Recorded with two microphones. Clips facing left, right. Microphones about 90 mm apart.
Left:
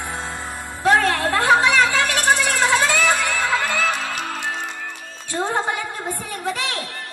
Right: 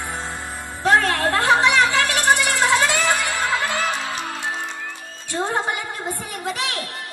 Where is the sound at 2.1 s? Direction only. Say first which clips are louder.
Even; 20° right (ahead or behind).